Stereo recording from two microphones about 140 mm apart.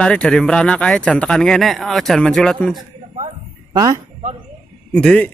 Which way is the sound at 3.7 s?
25° right (ahead or behind).